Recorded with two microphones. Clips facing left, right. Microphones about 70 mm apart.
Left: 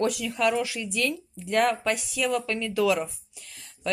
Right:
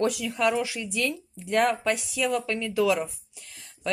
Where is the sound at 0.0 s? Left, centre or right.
Right.